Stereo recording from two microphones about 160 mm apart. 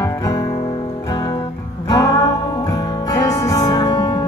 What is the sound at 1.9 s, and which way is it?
Music, 20° left (ahead or behind).